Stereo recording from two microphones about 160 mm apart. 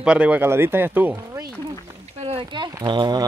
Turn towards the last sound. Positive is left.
turn(degrees=-30)  # may be behind; listen again after turning